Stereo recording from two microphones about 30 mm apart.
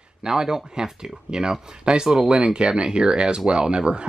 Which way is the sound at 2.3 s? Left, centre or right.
Right.